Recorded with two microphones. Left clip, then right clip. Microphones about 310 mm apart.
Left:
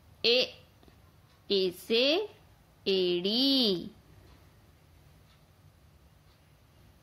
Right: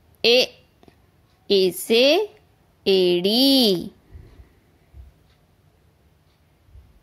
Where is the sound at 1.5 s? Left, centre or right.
Right.